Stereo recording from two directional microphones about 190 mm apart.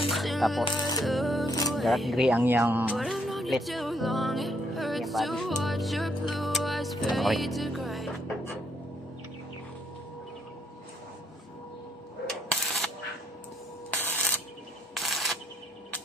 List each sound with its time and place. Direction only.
0.1 s music: centre (ahead or behind)
0.7 s music: 20° left (ahead or behind)
1.0 s music: centre (ahead or behind)
12.4 s camera: centre (ahead or behind)